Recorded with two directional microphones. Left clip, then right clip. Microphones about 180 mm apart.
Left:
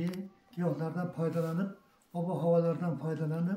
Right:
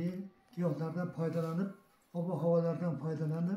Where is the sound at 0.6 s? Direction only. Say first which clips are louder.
Left 2 dB; 20° left (ahead or behind).